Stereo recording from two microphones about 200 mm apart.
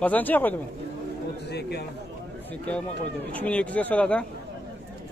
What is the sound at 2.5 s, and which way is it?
Speech, 5° left (ahead or behind).